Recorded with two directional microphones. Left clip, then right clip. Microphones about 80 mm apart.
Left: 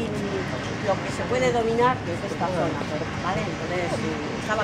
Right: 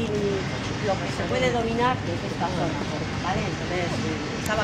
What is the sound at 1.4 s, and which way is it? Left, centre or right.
Speech, centre.